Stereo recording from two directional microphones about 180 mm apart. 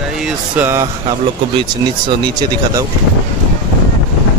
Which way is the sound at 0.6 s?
10° right (ahead or behind).